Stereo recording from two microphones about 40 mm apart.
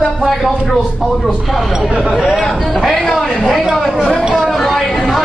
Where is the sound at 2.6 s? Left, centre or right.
Centre.